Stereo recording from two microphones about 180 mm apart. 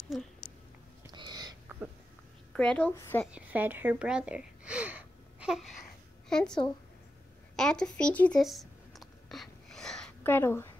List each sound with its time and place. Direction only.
1.1 s a sound: 25° right (ahead or behind)
2.5 s a child's voice: 5° left (ahead or behind)
3.3 s speech: 10° right (ahead or behind)
5.4 s babbling: 5° right (ahead or behind)
6.2 s a woman's voice: 5° left (ahead or behind)
7.5 s a sound: 5° left (ahead or behind)